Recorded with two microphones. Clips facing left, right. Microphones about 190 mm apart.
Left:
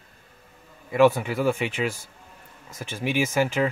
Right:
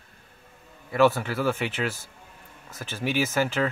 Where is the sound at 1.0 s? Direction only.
15° left (ahead or behind).